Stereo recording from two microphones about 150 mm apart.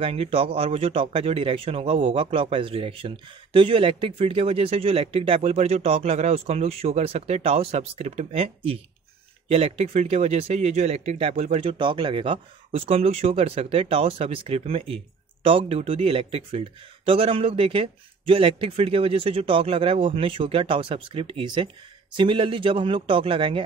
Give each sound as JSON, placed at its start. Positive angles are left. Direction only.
{"t": 0.0, "sound": "a man's voice", "side_deg": -40}